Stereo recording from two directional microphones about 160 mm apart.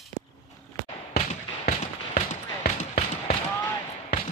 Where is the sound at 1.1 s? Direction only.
45° left (ahead or behind).